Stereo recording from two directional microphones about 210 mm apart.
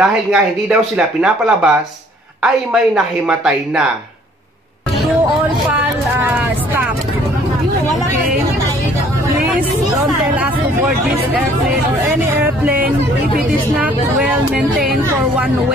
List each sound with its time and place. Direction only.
0.0 s speech: 5° right (ahead or behind)
5.7 s vehicle: 10° right (ahead or behind)
9.9 s hubbub: centre (ahead or behind)
11.3 s a sound: centre (ahead or behind)
13.7 s vehicle: 5° right (ahead or behind)
15.0 s music: 5° right (ahead or behind)